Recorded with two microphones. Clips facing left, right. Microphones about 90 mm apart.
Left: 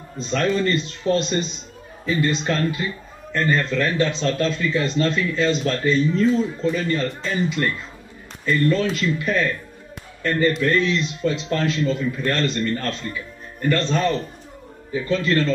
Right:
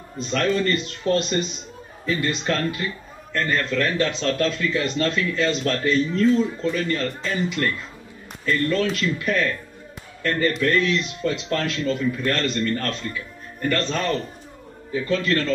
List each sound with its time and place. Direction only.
0.3 s speech: 5° left (ahead or behind)
1.0 s a man's voice: 15° left (ahead or behind)
2.0 s speech: 5° left (ahead or behind)